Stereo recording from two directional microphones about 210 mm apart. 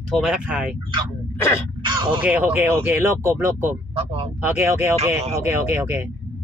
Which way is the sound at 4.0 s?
30° right (ahead or behind).